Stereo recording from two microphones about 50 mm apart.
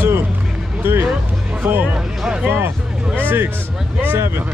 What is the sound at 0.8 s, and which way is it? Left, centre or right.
Music, right.